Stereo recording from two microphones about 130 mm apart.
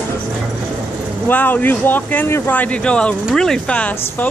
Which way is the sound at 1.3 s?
15° left (ahead or behind).